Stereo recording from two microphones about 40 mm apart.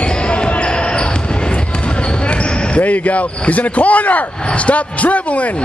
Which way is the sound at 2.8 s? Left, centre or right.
Left.